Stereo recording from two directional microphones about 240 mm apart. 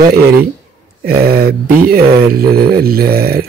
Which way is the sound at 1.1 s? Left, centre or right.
Right.